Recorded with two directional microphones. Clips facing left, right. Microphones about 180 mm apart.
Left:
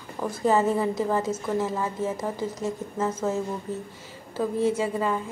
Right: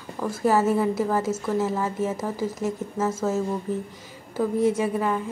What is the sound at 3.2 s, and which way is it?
Speech, centre (ahead or behind).